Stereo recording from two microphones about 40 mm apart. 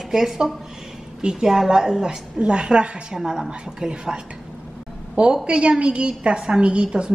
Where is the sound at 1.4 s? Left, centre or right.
Centre.